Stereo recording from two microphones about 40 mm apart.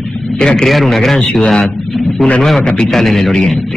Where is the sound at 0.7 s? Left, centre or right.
Centre.